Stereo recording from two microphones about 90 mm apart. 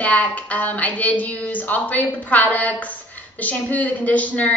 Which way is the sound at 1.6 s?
15° left (ahead or behind).